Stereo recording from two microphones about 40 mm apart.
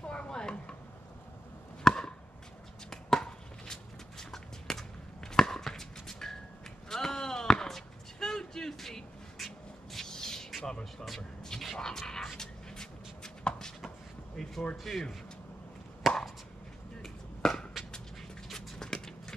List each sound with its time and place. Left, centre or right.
0.0 s chopping: left
1.8 s chop: centre
2.9 s chopping: centre
3.3 s a sound: centre
9.9 s squawk: centre
10.6 s a sound: centre
14.8 s speech: centre
16.0 s chop: centre
18.5 s a sound: centre